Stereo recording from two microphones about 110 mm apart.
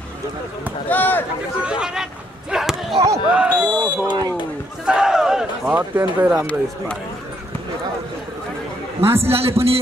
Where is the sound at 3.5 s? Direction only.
15° left (ahead or behind).